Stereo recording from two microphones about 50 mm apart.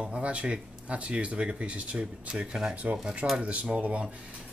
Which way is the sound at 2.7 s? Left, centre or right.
Right.